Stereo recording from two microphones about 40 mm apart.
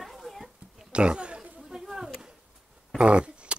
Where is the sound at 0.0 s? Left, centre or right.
Centre.